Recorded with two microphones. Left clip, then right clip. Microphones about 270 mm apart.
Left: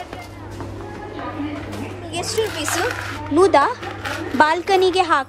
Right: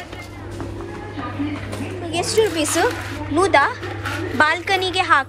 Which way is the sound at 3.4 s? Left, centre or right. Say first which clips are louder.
Left 1 dB; centre.